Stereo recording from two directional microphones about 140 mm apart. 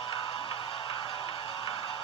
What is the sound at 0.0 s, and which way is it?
Music, 35° left (ahead or behind).